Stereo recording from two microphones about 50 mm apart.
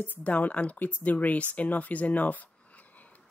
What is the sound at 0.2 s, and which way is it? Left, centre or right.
Speech, left.